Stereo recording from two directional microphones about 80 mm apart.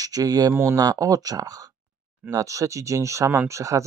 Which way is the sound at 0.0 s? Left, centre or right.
Right.